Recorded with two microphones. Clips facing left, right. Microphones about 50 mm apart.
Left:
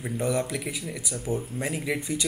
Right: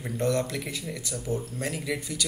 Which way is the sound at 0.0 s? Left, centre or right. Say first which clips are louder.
Even; centre.